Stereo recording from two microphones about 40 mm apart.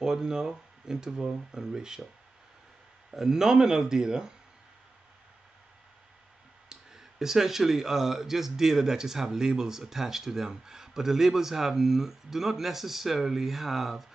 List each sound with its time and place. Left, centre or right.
0.0 s speech: centre
3.1 s speech: centre
6.7 s speech: centre